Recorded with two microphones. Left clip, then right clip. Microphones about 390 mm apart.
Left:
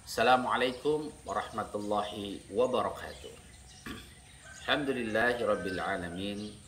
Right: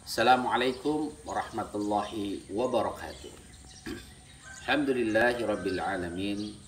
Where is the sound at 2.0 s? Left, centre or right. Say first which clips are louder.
Right 3 dB; right.